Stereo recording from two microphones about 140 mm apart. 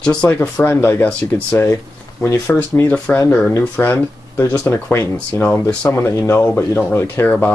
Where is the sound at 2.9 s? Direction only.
10° left (ahead or behind).